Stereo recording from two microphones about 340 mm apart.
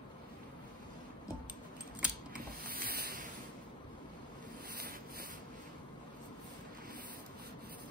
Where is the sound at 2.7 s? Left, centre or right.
Right.